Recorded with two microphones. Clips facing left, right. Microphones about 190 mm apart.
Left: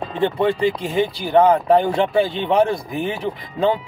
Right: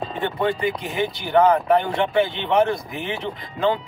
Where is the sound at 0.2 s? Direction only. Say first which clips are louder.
Left 5 dB; 30° left (ahead or behind).